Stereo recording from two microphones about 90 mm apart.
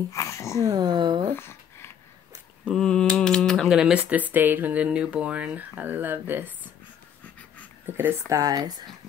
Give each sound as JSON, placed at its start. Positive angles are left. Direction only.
{"t": 0.1, "sound": "speech", "side_deg": 35}
{"t": 0.7, "sound": "speech", "side_deg": -50}
{"t": 1.3, "sound": "a sound", "side_deg": 25}
{"t": 2.7, "sound": "typing", "side_deg": 5}
{"t": 3.6, "sound": "speech", "side_deg": -5}
{"t": 4.1, "sound": "speech", "side_deg": -20}
{"t": 8.3, "sound": "speech", "side_deg": -40}